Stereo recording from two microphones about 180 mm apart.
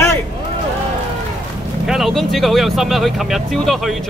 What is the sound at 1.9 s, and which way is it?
Speech, centre (ahead or behind).